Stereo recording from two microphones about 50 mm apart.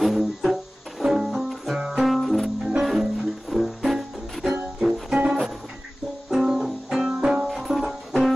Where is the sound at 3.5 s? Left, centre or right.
Centre.